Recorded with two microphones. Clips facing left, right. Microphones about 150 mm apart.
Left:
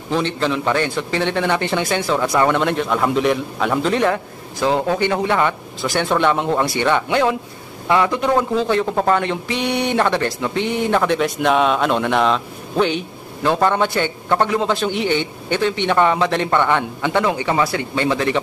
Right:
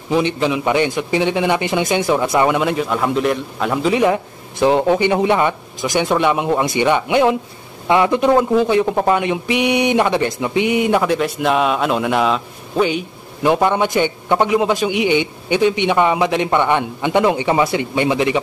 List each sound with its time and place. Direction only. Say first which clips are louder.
0.1 s speech: right 3 dB; 15° right (ahead or behind)
2.4 s a man's voice: right 1 dB; 5° right (ahead or behind)